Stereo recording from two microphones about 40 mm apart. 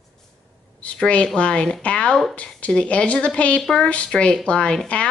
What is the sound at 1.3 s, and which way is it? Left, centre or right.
A woman's voice, left.